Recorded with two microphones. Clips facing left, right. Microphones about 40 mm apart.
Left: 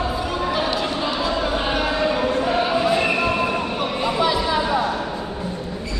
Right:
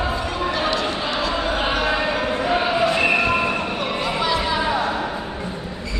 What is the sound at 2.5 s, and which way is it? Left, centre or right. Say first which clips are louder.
Choir: even; centre.